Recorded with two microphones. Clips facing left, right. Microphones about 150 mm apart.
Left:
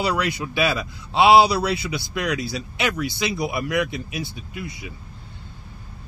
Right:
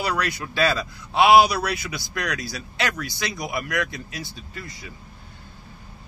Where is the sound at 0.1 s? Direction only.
15° left (ahead or behind).